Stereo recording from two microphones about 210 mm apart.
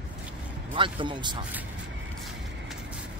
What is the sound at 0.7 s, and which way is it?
Speech, 25° right (ahead or behind).